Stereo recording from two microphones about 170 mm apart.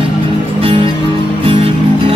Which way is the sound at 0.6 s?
30° right (ahead or behind).